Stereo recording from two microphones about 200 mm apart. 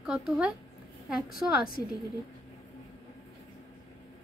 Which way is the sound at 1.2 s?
45° left (ahead or behind).